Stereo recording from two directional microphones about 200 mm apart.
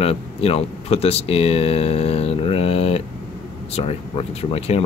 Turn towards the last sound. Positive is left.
turn(degrees=30)  # may be behind; listen again after turning